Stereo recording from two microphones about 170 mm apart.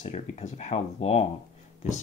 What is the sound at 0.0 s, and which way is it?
Speech, 40° left (ahead or behind).